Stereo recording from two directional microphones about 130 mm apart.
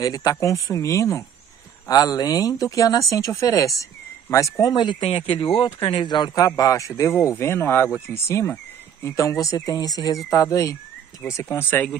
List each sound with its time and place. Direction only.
0.0 s a man's voice: 25° left (ahead or behind)
5.0 s a man's voice: 55° left (ahead or behind)
5.3 s a man's voice: 45° left (ahead or behind); by 12.0 s 15° left (ahead or behind)